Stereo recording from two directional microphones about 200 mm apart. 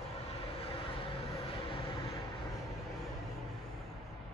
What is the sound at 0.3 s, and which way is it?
Vehicle, 30° left (ahead or behind).